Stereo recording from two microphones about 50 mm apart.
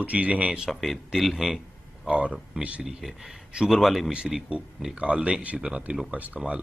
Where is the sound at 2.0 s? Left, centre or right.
Right.